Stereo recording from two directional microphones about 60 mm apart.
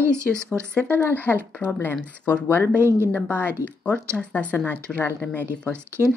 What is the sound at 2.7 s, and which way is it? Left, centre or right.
Speech, right.